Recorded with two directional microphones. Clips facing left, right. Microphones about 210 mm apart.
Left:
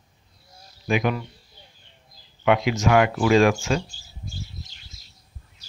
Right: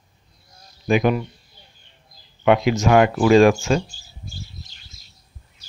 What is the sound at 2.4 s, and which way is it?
Speech, 35° right (ahead or behind).